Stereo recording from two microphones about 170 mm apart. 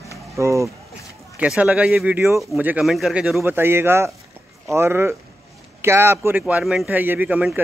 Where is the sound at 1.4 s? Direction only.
5° right (ahead or behind).